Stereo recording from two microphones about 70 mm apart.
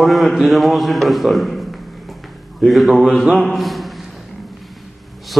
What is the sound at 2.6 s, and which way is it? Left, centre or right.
A man's voice, centre.